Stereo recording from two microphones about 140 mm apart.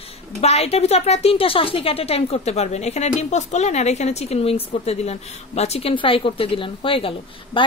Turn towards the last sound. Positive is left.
turn(degrees=40)  # may be behind; listen again after turning